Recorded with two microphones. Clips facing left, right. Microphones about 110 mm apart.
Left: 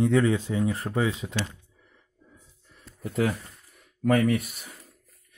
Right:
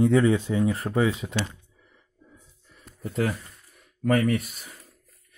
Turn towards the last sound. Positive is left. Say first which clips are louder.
# even
turn(degrees=0)  # may be behind; listen again after turning